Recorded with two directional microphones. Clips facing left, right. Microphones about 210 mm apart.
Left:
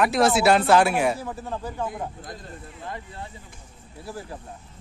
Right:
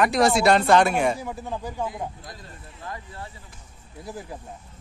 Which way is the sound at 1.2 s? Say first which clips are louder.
Even; 10° right (ahead or behind).